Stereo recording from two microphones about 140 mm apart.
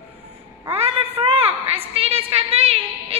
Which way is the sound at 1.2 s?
40° right (ahead or behind).